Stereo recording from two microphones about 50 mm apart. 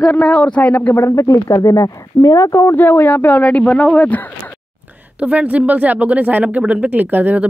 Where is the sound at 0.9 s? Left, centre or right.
Left.